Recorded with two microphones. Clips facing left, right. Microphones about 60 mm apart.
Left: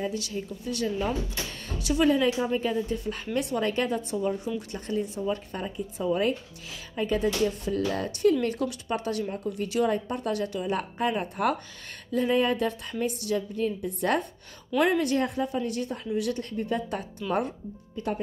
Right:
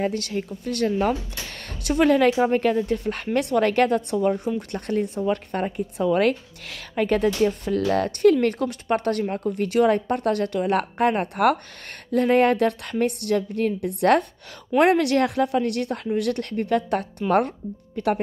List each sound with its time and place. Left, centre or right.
0.0 s speech: right